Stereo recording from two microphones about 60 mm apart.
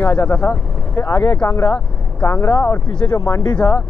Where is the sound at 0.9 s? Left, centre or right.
Left.